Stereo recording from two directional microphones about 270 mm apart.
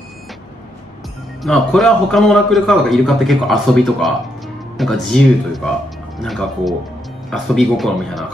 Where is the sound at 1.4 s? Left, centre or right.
Centre.